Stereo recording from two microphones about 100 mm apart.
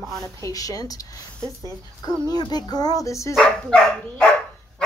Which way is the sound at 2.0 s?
40° left (ahead or behind).